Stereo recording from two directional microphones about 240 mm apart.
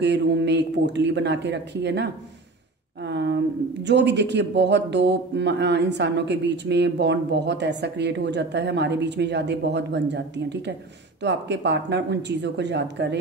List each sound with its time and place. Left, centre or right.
0.0 s speech: right
3.1 s speech: right